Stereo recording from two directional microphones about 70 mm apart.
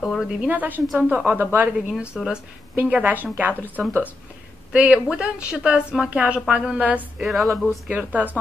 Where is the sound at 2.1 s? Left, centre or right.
Centre.